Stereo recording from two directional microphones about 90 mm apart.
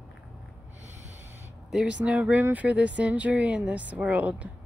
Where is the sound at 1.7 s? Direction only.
10° right (ahead or behind).